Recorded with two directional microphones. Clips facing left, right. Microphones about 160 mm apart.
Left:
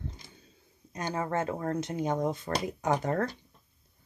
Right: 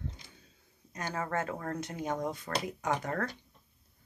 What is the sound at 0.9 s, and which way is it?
Speech, 25° left (ahead or behind).